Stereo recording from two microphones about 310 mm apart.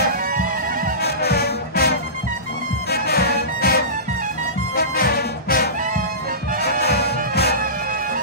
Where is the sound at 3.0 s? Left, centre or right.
Left.